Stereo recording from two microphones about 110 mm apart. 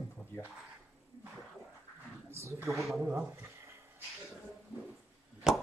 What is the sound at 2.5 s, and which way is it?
Speech, 25° right (ahead or behind).